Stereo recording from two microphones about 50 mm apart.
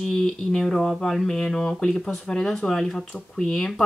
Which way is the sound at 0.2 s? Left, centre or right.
Centre.